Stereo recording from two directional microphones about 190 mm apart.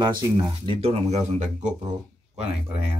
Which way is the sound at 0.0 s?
20° right (ahead or behind).